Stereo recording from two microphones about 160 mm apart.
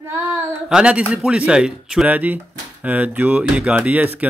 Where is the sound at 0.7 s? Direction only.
5° right (ahead or behind).